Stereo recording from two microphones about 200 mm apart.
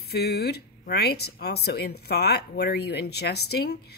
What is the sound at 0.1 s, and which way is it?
A woman's voice, 55° left (ahead or behind).